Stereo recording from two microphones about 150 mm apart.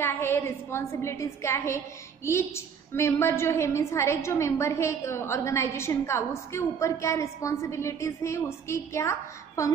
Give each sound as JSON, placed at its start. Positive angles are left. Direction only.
{"t": 0.0, "sound": "a woman's voice", "side_deg": 15}